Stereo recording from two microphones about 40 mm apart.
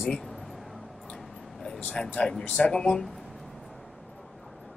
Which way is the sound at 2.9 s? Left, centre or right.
Centre.